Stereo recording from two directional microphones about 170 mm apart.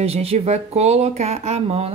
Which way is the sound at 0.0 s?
35° right (ahead or behind).